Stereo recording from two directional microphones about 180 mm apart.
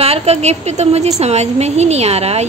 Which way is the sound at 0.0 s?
35° right (ahead or behind).